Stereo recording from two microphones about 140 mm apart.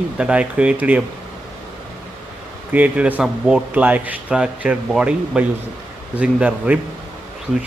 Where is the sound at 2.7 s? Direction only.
10° right (ahead or behind).